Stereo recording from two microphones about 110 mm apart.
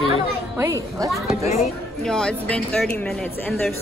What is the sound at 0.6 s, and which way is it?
Speech, 25° right (ahead or behind).